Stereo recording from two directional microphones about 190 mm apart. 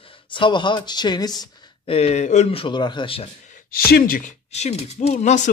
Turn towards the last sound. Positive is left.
turn(degrees=40)  # may be behind; listen again after turning